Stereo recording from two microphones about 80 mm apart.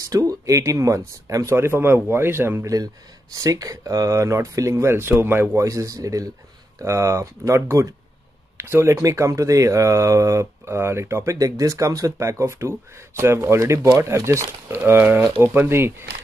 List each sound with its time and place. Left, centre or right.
0.0 s speech: right
2.7 s speech: right
5.6 s speech: right
11.3 s speech: right
14.8 s speech: right